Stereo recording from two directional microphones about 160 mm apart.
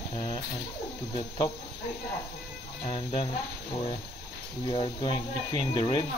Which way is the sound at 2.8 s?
35° left (ahead or behind).